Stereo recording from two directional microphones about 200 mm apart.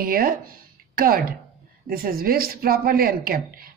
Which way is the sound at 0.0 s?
45° right (ahead or behind).